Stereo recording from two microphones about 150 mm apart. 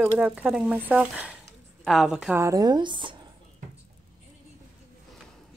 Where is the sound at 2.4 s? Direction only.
20° right (ahead or behind).